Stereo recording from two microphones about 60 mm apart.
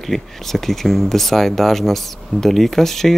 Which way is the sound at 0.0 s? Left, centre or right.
Centre.